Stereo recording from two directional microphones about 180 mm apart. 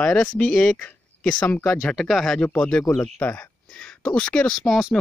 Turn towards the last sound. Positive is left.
turn(degrees=0)  # may be behind; listen again after turning